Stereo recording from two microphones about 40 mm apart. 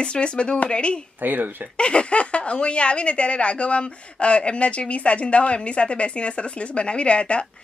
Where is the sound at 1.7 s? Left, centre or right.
Left.